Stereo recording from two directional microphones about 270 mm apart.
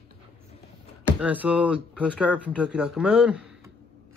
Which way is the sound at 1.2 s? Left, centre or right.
Centre.